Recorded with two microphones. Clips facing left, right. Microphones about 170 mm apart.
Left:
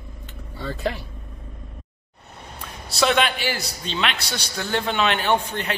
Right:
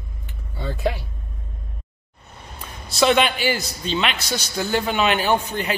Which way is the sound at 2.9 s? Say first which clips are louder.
Right 3 dB; centre (ahead or behind).